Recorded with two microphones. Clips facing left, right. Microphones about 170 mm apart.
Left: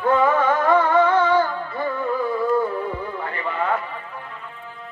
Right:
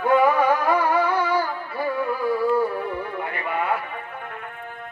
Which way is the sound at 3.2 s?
10° right (ahead or behind).